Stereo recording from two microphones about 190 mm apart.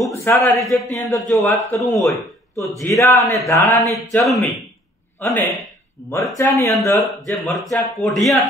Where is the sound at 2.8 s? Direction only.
15° left (ahead or behind).